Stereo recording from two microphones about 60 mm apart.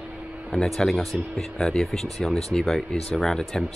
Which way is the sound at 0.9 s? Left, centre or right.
Centre.